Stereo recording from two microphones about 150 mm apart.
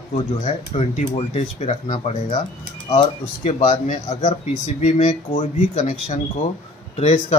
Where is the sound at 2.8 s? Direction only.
30° left (ahead or behind).